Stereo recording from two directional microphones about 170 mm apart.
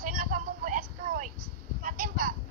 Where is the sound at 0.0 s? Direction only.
55° right (ahead or behind).